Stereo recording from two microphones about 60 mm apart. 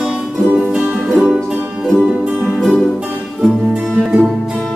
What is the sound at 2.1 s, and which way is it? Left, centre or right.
Music, right.